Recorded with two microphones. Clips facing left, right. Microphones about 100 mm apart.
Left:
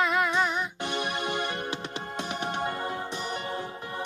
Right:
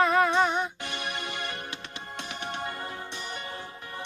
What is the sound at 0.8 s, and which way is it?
Music, 30° left (ahead or behind).